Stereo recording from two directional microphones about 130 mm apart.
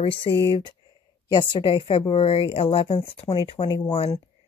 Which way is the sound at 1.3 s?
35° left (ahead or behind).